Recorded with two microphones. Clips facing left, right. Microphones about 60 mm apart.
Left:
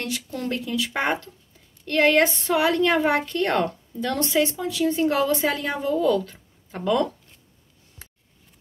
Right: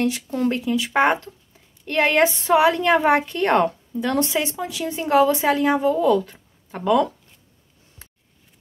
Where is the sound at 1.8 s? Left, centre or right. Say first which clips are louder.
Right 1 dB; centre.